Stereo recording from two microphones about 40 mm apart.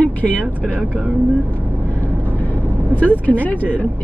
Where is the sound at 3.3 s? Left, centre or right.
Left.